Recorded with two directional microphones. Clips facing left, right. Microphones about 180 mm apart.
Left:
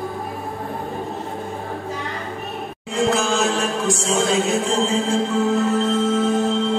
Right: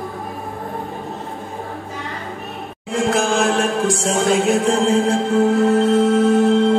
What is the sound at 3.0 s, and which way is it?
Music, 55° right (ahead or behind).